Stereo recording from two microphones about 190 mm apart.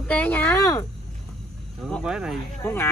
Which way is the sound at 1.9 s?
5° right (ahead or behind).